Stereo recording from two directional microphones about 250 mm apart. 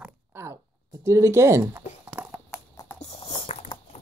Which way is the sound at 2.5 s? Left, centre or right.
Centre.